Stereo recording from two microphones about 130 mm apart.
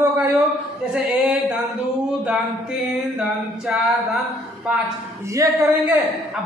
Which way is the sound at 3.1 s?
5° right (ahead or behind).